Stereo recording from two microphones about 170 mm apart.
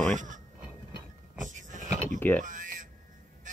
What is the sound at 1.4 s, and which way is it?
Vehicle, 50° right (ahead or behind).